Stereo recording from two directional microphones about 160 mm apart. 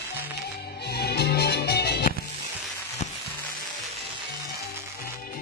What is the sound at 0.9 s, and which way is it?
Music, 90° left.